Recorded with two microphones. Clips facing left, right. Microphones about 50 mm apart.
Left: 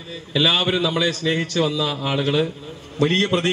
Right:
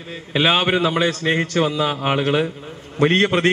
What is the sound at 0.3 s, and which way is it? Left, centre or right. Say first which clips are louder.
A man's voice: right 2 dB; right.